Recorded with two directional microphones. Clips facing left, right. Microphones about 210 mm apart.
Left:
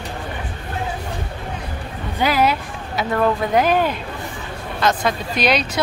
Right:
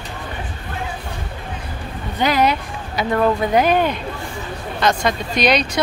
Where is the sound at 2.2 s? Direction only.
5° left (ahead or behind).